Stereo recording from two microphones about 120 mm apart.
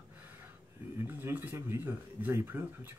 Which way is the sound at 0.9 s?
20° right (ahead or behind).